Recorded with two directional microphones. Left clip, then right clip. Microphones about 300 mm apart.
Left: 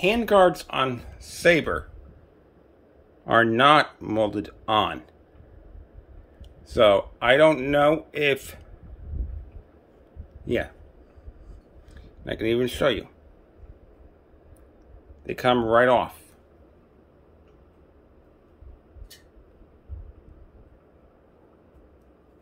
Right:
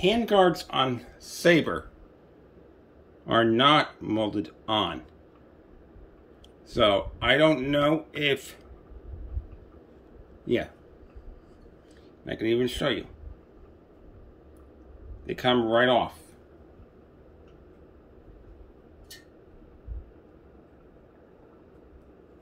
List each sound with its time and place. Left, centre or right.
0.0 s speech: centre
3.3 s speech: centre
6.7 s speech: centre
10.4 s speech: centre
12.3 s speech: centre
15.2 s speech: centre